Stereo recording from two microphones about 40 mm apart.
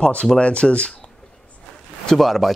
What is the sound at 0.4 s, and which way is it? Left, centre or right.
Speech, left.